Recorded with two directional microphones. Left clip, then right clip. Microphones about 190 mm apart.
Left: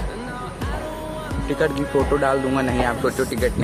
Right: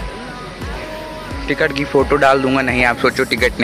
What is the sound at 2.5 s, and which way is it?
Speech, 10° right (ahead or behind).